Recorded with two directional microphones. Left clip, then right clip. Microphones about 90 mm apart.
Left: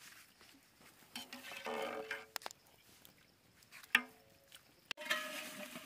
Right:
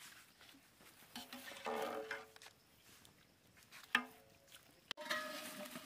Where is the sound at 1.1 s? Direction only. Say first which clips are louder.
Left 3 dB; 10° right (ahead or behind).